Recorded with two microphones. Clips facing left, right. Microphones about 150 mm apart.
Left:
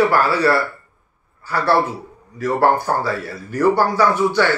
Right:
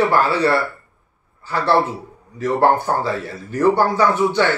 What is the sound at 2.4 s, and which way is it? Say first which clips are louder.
Speech: even; 20° right (ahead or behind).